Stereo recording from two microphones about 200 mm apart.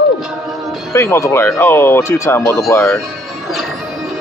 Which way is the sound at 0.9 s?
15° left (ahead or behind).